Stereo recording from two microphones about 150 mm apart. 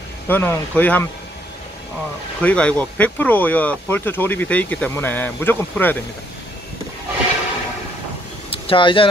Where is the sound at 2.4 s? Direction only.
10° left (ahead or behind).